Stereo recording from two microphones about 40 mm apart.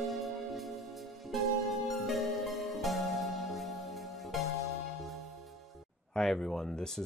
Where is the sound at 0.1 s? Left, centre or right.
Centre.